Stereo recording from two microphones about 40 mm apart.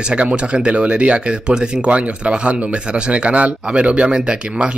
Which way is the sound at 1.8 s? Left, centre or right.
Right.